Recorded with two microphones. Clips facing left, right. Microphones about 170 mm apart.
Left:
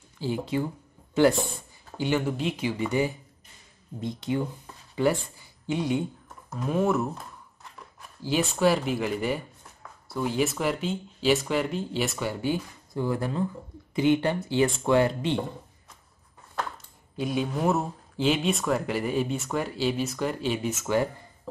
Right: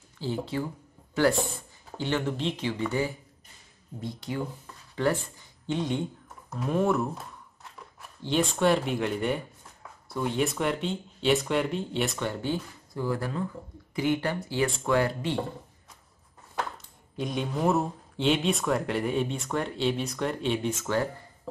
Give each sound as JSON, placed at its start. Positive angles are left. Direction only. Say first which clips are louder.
{"t": 0.2, "sound": "speech", "louder": "left 3 dB", "side_deg": 15}
{"t": 2.0, "sound": "speech", "louder": "left 2 dB", "side_deg": 10}
{"t": 4.9, "sound": "speech", "louder": "left 2 dB", "side_deg": 10}
{"t": 8.2, "sound": "speech", "louder": "left 1 dB", "side_deg": 5}
{"t": 12.9, "sound": "speech", "louder": "left 2 dB", "side_deg": 25}
{"t": 17.2, "sound": "speech", "louder": "left 2 dB", "side_deg": 5}